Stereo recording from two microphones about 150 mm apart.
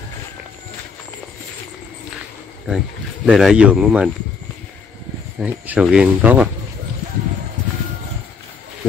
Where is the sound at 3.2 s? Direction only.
5° right (ahead or behind).